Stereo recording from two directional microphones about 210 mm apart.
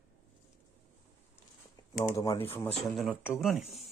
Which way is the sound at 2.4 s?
10° left (ahead or behind).